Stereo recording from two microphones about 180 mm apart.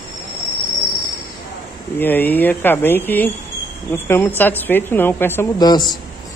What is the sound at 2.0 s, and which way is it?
Speech, 10° left (ahead or behind).